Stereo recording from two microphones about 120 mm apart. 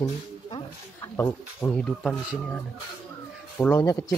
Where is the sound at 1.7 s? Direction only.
5° left (ahead or behind).